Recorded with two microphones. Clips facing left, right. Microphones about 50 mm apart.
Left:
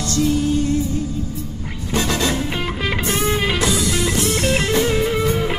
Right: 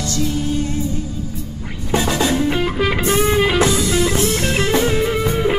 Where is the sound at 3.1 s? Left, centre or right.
Centre.